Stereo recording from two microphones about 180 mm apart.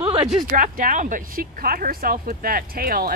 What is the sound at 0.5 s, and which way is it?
Speech, 45° right (ahead or behind).